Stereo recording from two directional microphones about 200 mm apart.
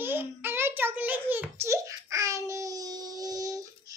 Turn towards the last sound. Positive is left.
turn(degrees=-15)  # may be behind; listen again after turning